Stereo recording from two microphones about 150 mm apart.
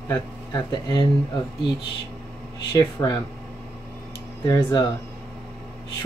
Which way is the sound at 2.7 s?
30° left (ahead or behind).